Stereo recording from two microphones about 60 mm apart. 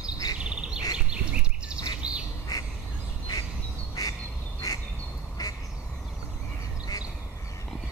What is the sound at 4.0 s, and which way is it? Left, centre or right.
Duck, left.